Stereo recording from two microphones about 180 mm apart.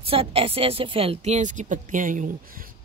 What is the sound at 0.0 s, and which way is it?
Speech, 30° right (ahead or behind).